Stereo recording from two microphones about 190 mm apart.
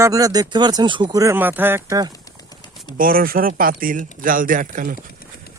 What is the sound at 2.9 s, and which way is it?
Speech, 50° right (ahead or behind).